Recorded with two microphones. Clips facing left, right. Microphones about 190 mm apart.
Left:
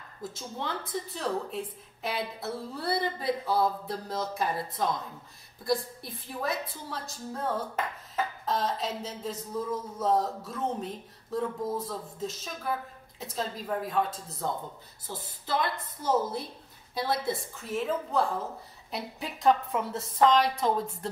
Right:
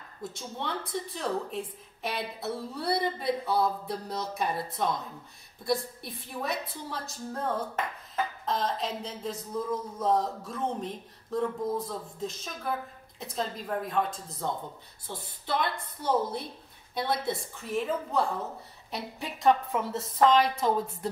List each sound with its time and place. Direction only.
0.2 s speech: centre (ahead or behind)